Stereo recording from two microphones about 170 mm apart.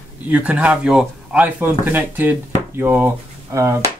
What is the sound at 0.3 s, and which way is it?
Speech, 10° right (ahead or behind).